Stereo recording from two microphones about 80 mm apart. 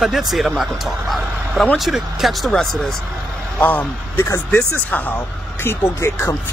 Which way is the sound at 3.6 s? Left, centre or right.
Left.